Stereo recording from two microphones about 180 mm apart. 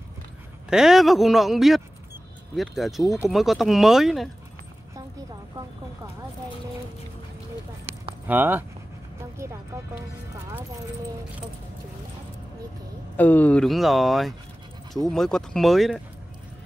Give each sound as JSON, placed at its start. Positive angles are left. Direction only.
{"t": 0.7, "sound": "speech", "side_deg": 0}
{"t": 8.3, "sound": "speech", "side_deg": -10}
{"t": 13.1, "sound": "speech", "side_deg": 10}